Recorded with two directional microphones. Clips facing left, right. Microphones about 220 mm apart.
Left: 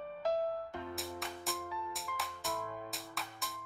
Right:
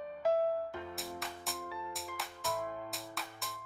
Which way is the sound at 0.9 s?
Centre (ahead or behind).